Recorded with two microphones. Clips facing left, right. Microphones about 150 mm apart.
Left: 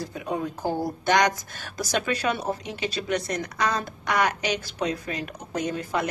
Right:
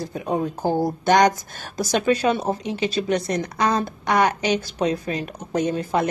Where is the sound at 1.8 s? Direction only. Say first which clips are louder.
Right 7 dB; 30° right (ahead or behind).